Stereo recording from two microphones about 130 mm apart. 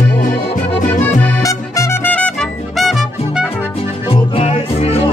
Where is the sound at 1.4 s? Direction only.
25° left (ahead or behind).